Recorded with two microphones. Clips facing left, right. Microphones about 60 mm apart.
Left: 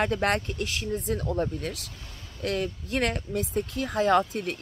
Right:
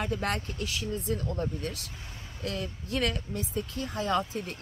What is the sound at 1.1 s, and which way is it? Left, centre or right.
Speech, left.